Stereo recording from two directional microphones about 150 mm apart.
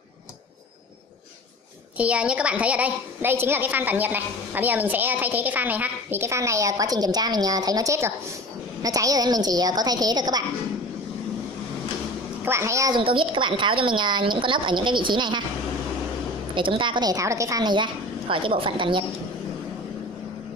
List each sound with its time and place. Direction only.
2.0 s a woman's voice: 10° right (ahead or behind); by 10.4 s 25° right (ahead or behind)
12.4 s a woman's voice: 20° right (ahead or behind)
12.9 s speech: 35° right (ahead or behind)
16.5 s a woman's voice: 35° right (ahead or behind)